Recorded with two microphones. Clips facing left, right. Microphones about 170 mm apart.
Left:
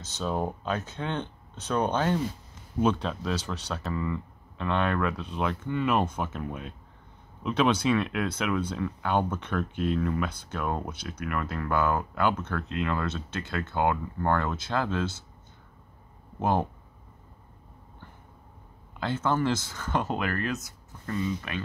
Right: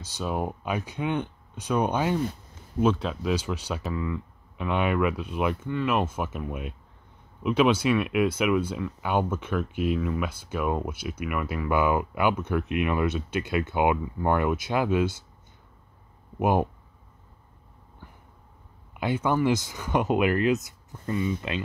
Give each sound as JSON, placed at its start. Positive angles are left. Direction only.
{"t": 0.0, "sound": "speech", "side_deg": -10}
{"t": 16.3, "sound": "speech", "side_deg": -15}
{"t": 18.9, "sound": "speech", "side_deg": -15}